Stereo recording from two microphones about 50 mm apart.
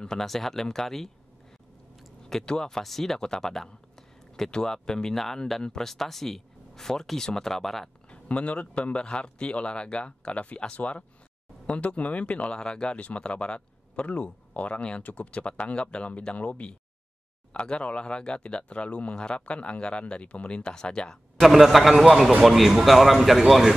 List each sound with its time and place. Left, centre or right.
0.0 s speech: centre
2.2 s speech: centre
8.1 s speech: left
21.4 s speech: centre